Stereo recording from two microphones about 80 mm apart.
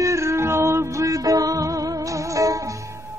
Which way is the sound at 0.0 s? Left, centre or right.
Right.